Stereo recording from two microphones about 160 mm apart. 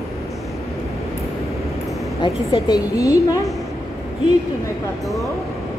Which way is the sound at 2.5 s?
20° left (ahead or behind).